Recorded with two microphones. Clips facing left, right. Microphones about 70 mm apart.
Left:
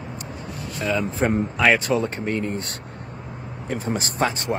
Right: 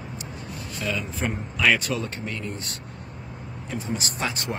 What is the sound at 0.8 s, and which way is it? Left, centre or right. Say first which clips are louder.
Speech: left 6 dB; left.